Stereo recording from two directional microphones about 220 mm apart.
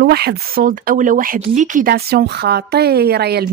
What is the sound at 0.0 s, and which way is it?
Speech, 45° right (ahead or behind).